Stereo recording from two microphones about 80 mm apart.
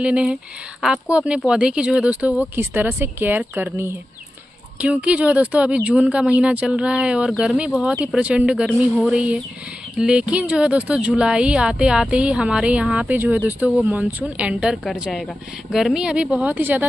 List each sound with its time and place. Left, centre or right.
0.0 s speech: centre
4.7 s speech: centre